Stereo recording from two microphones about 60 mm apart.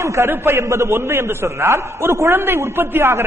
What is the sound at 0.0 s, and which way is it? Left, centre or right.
A man's voice, right.